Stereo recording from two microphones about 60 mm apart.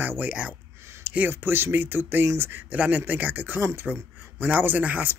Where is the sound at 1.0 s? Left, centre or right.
Right.